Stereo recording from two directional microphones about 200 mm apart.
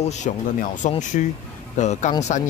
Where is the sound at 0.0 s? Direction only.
35° left (ahead or behind).